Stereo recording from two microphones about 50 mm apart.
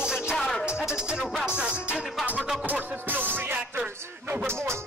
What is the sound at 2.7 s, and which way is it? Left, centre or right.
Music, right.